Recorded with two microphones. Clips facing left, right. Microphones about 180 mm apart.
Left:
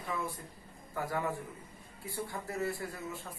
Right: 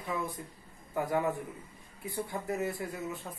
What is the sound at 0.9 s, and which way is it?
A man's voice, 20° right (ahead or behind).